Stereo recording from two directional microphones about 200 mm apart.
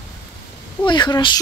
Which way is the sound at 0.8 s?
20° left (ahead or behind).